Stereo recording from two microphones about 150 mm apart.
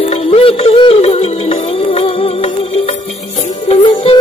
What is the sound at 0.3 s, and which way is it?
Music, 40° left (ahead or behind).